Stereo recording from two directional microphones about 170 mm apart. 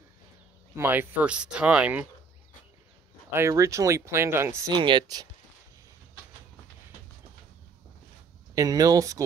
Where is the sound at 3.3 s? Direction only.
15° right (ahead or behind).